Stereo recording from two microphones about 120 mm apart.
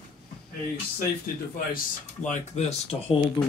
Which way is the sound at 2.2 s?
70° left (ahead or behind).